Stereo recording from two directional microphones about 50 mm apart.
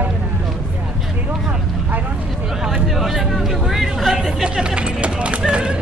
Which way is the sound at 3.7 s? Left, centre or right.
Centre.